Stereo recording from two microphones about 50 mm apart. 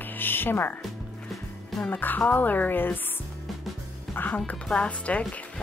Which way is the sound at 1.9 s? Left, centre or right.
Left.